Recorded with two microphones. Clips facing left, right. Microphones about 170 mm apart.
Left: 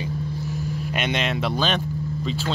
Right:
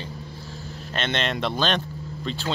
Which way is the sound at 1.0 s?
10° left (ahead or behind).